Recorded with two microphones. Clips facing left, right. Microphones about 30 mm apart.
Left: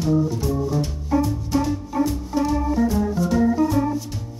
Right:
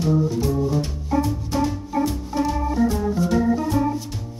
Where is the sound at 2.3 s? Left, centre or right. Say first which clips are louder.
Left 1 dB; centre.